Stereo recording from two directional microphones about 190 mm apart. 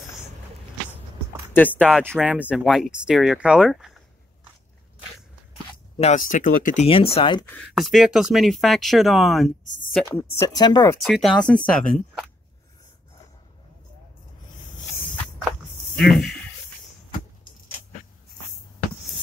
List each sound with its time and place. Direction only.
1.5 s speech: 10° left (ahead or behind)
5.9 s speech: 40° left (ahead or behind)
6.9 s speech: 30° left (ahead or behind)
7.5 s speech: centre (ahead or behind)
10.5 s speech: 20° left (ahead or behind)
11.1 s speech: centre (ahead or behind)
16.0 s speech: centre (ahead or behind)